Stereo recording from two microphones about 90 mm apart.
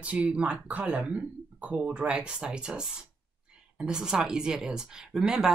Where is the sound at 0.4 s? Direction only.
15° right (ahead or behind).